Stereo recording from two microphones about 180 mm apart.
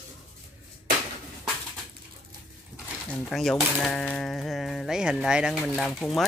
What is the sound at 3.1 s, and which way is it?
Speech, centre (ahead or behind).